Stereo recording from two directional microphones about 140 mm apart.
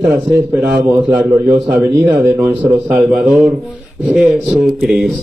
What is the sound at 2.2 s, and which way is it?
Speech, 15° right (ahead or behind).